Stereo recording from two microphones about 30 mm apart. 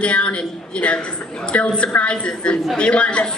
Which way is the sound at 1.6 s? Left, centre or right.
Left.